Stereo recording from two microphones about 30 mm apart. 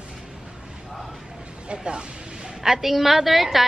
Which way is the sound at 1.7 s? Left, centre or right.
Right.